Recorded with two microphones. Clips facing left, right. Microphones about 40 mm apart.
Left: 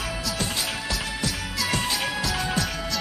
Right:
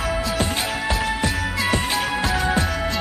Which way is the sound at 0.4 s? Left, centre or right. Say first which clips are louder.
Right 5 dB; right.